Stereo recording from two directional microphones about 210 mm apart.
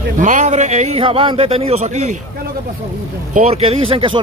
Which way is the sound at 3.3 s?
30° right (ahead or behind).